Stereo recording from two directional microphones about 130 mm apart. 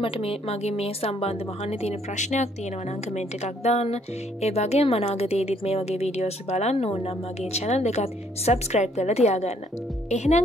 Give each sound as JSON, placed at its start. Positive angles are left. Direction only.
{"t": 0.0, "sound": "speech", "side_deg": 45}